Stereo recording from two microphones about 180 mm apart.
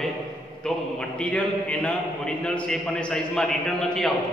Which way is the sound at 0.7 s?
5° left (ahead or behind).